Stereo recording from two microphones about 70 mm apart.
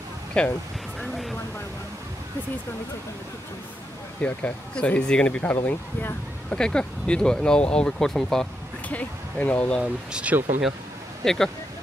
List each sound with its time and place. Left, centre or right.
0.3 s speech: centre
1.0 s a sound: centre
4.2 s speech: left
6.5 s speech: centre
8.8 s speech: left
10.3 s speech: right
11.2 s speech: centre